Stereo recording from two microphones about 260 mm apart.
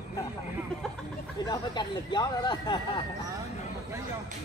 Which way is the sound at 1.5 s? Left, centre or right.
Centre.